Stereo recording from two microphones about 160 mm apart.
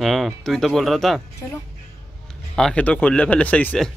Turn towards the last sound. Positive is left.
turn(degrees=5)  # may be behind; listen again after turning